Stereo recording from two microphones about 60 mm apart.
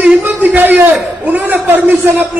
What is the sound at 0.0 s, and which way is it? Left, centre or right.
A man's voice, right.